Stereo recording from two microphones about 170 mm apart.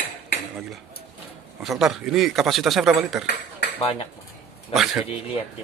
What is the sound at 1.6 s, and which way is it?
Speech, centre (ahead or behind).